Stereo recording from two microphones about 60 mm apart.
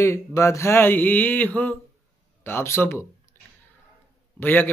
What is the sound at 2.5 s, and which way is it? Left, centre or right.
Speech, left.